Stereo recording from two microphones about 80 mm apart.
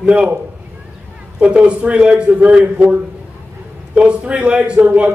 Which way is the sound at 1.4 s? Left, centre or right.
Centre.